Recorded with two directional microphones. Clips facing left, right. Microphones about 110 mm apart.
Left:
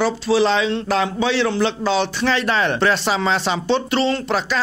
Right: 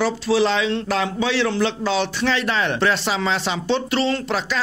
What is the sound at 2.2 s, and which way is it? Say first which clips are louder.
Speech: left 2 dB; 40° left (ahead or behind).